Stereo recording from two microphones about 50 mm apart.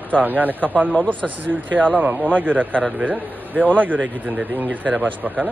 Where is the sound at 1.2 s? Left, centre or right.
Right.